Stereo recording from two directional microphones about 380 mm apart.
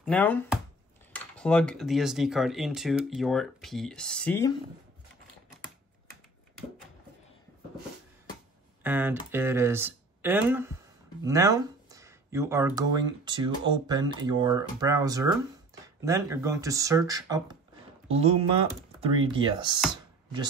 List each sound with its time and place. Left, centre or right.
0.0 s speech: centre
8.8 s speech: centre
19.9 s computer keyboard: centre